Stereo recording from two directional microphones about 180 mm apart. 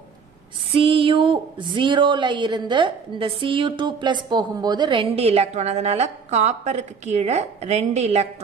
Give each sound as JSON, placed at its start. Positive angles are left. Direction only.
{"t": 0.7, "sound": "a woman's voice", "side_deg": -30}